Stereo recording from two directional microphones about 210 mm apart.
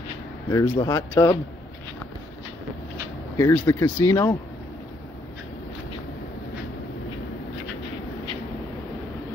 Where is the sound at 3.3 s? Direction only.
15° left (ahead or behind).